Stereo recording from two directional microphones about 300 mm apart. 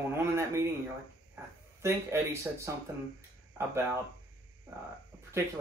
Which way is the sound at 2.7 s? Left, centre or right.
Centre.